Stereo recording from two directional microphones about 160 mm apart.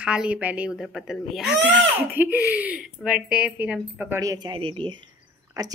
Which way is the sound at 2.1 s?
10° right (ahead or behind).